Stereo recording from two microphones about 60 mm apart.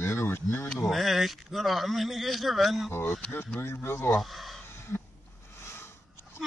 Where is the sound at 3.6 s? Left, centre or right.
Left.